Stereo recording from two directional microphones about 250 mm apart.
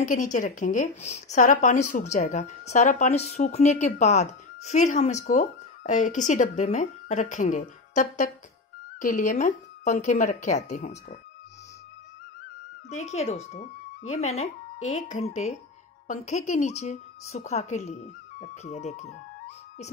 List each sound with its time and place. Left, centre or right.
0.0 s a woman's voice: left
12.9 s a woman's voice: left